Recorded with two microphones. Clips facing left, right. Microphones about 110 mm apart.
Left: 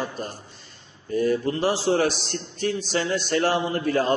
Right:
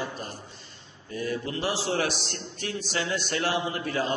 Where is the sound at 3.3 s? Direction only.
45° left (ahead or behind).